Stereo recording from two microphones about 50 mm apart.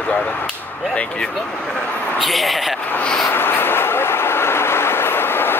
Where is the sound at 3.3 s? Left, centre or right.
Left.